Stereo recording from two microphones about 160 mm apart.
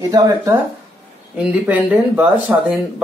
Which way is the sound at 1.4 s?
10° right (ahead or behind).